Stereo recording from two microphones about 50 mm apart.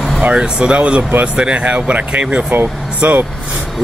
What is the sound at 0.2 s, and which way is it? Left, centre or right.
Speech, centre.